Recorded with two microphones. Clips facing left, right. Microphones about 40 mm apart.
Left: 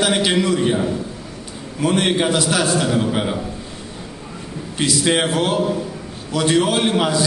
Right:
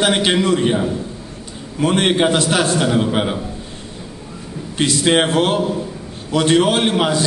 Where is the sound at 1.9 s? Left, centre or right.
Centre.